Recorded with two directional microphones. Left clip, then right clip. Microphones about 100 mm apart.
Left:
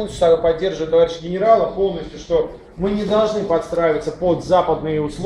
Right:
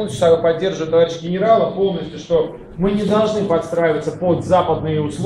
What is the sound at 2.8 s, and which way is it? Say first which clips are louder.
A man's voice: right 1 dB; 55° left (ahead or behind).